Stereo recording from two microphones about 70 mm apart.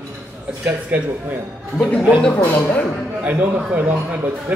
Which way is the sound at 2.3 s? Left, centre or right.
Left.